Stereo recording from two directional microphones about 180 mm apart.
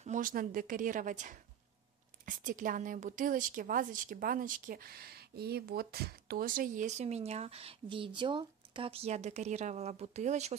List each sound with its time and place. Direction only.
0.0 s a woman's voice: 45° right (ahead or behind)